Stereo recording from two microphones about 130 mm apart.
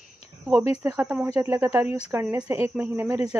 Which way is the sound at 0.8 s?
10° right (ahead or behind).